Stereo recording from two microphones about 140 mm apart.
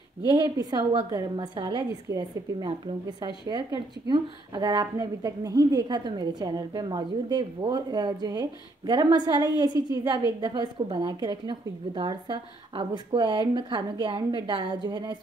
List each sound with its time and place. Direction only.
0.6 s a woman's voice: 30° right (ahead or behind)